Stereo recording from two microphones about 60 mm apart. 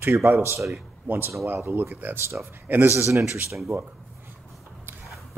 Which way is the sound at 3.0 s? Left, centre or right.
Right.